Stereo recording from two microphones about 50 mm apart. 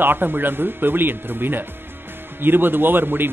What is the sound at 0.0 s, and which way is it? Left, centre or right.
A man's voice, right.